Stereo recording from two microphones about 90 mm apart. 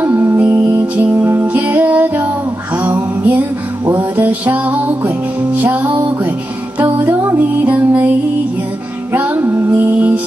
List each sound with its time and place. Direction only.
0.0 s music: 25° right (ahead or behind)
9.1 s music: 20° right (ahead or behind)